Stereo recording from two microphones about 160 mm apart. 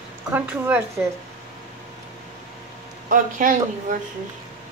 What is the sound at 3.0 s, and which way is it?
Speech, 55° right (ahead or behind).